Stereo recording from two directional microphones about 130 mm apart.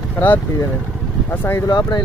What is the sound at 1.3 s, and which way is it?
Speech, 15° left (ahead or behind).